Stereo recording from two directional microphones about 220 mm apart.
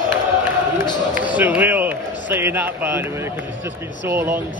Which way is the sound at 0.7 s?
20° left (ahead or behind).